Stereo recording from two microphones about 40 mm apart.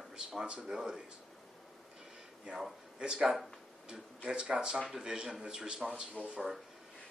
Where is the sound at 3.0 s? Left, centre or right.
Right.